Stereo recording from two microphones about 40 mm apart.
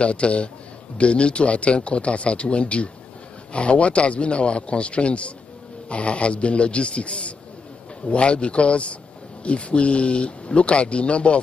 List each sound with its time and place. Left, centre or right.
0.0 s a man's voice: left